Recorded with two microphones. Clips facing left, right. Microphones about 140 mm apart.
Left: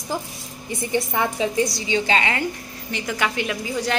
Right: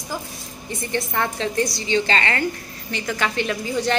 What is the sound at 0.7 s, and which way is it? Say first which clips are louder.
A woman's voice: left 2 dB; 10° left (ahead or behind).